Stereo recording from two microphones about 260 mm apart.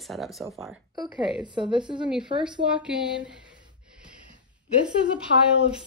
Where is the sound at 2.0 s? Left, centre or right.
Centre.